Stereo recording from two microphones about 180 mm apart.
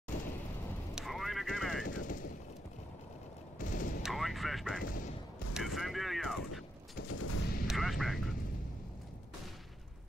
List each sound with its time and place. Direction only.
0.9 s a sound: centre (ahead or behind)
1.9 s machine gun: 45° left (ahead or behind)
3.5 s fusillade: 50° left (ahead or behind)
4.0 s vehicle: centre (ahead or behind)
4.8 s quack: 50° left (ahead or behind)
5.5 s mechanisms: centre (ahead or behind)
7.0 s fusillade: 60° left (ahead or behind)
7.6 s a sound: centre (ahead or behind)